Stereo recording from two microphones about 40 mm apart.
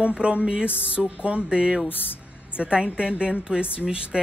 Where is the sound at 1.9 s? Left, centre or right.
Left.